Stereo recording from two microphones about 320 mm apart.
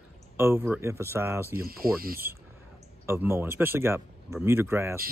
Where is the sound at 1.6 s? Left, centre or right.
Right.